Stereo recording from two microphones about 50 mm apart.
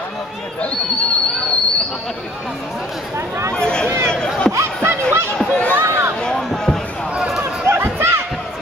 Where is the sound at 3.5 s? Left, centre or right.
Centre.